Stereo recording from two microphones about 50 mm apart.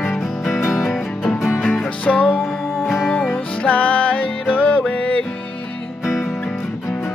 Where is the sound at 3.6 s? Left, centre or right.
Left.